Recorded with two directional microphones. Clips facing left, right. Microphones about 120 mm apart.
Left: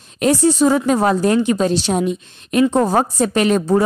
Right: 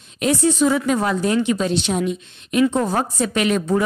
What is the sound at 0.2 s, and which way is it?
Speech, 40° left (ahead or behind).